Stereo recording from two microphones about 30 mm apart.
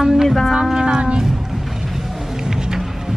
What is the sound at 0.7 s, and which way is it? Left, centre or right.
Speech, right.